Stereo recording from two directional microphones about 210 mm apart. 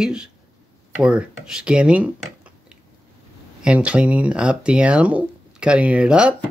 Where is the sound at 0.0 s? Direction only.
5° right (ahead or behind).